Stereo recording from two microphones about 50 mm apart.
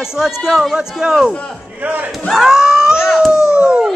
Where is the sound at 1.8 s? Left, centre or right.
Right.